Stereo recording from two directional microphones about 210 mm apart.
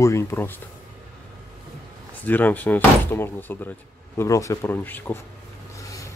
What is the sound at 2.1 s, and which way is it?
Speech, 10° left (ahead or behind).